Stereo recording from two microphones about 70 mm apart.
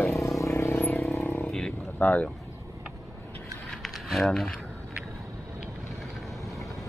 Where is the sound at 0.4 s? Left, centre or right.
Left.